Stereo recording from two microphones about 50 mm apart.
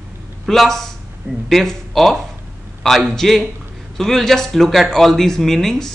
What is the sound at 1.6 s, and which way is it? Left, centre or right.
Speech, centre.